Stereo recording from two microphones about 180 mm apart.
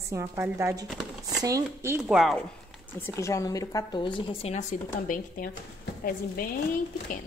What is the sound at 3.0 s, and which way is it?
A woman's voice, 15° left (ahead or behind).